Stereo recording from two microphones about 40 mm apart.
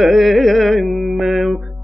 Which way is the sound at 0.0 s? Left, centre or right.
Centre.